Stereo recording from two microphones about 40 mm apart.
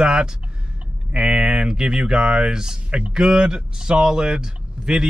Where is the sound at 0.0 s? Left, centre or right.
Right.